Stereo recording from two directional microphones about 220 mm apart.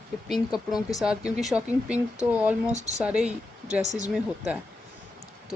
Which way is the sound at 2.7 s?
30° right (ahead or behind).